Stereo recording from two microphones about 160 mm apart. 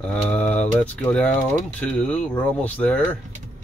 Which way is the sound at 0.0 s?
10° left (ahead or behind).